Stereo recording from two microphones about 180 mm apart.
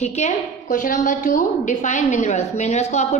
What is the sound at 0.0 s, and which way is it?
A woman's voice, 40° left (ahead or behind).